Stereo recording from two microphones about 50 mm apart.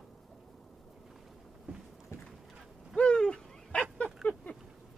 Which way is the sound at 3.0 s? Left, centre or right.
Centre.